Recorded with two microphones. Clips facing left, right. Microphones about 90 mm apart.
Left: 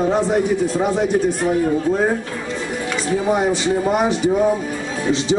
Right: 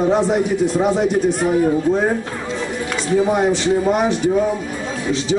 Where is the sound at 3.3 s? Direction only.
5° left (ahead or behind).